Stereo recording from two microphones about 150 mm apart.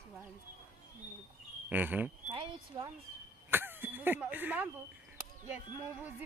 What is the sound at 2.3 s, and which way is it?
Speech, 35° right (ahead or behind).